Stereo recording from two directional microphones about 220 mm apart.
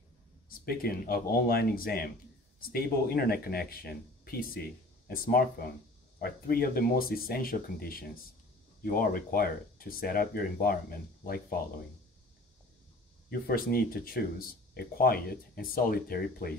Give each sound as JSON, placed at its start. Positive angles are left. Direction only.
{"t": 0.5, "sound": "speech", "side_deg": 45}
{"t": 13.3, "sound": "speech", "side_deg": 45}